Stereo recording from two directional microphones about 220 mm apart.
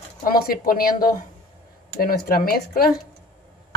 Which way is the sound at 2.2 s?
45° left (ahead or behind).